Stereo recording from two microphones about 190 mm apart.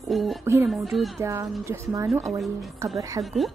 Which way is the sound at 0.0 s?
Centre (ahead or behind).